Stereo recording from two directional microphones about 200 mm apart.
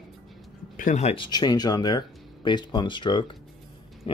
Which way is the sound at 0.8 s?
35° left (ahead or behind).